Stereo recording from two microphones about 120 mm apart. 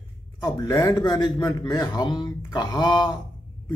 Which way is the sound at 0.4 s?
30° left (ahead or behind).